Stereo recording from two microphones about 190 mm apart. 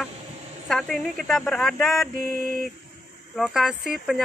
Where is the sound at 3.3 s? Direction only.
Centre (ahead or behind).